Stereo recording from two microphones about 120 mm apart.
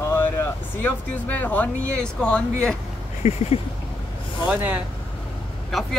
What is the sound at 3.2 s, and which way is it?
Speech, 60° left (ahead or behind).